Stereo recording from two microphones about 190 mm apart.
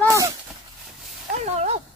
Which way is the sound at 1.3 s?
35° right (ahead or behind).